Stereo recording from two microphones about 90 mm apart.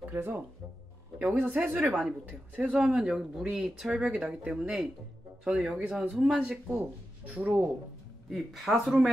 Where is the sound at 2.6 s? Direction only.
10° right (ahead or behind).